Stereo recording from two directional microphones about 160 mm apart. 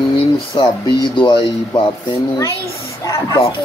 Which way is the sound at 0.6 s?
30° left (ahead or behind).